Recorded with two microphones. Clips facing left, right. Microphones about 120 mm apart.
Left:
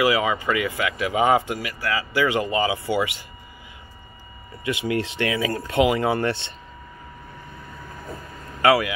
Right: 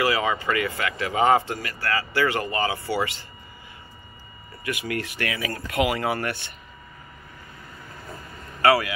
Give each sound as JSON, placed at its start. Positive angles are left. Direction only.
{"t": 0.0, "sound": "speech", "side_deg": 10}
{"t": 4.6, "sound": "speech", "side_deg": 25}
{"t": 8.6, "sound": "speech", "side_deg": 15}